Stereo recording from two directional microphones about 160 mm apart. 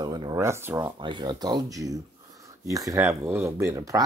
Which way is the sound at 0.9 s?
30° right (ahead or behind).